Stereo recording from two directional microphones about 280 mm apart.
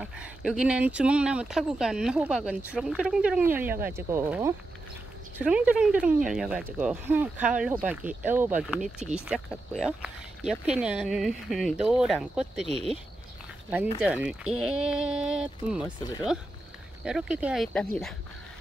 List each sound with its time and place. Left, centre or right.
0.0 s speech: centre
12.6 s speech: right
14.0 s speech: centre
17.0 s speech: centre